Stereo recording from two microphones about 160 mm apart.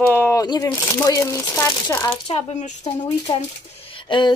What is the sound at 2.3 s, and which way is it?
Speech, 45° left (ahead or behind).